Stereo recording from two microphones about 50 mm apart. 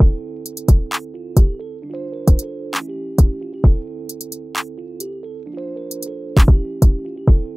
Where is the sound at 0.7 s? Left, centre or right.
Centre.